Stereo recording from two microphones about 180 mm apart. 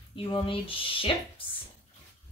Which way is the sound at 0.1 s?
30° left (ahead or behind).